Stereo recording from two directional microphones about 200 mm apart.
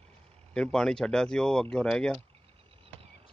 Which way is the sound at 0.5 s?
5° left (ahead or behind).